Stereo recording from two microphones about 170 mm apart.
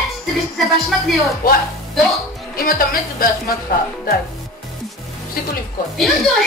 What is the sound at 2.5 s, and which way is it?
Speech, 60° left (ahead or behind).